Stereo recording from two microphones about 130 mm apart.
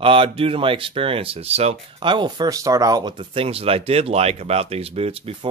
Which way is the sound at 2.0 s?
35° right (ahead or behind).